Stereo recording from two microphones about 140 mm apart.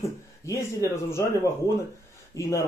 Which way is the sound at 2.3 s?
25° left (ahead or behind).